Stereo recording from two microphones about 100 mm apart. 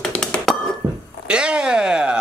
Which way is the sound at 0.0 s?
10° left (ahead or behind).